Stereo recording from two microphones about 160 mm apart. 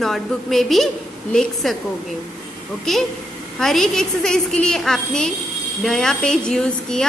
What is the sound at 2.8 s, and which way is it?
A woman's voice, centre (ahead or behind).